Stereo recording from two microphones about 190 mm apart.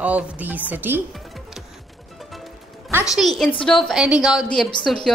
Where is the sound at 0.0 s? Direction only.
10° right (ahead or behind).